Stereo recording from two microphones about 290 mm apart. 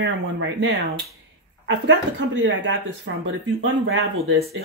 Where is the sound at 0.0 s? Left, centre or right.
Right.